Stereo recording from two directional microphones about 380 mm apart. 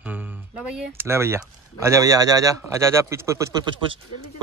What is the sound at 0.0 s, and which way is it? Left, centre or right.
Speech, centre.